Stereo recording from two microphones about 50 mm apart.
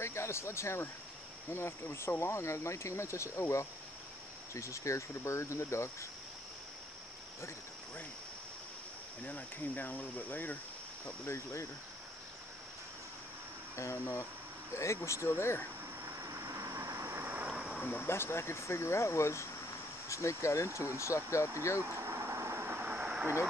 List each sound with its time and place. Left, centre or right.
0.0 s speech: left
4.6 s speech: left
9.2 s cricket: left
11.2 s speech: left
13.7 s speech: left
16.2 s vehicle: right
17.0 s vehicle: right
17.5 s a sound: centre
18.0 s speech: left
20.1 s speech: left
21.9 s vehicle: right
22.8 s vehicle: right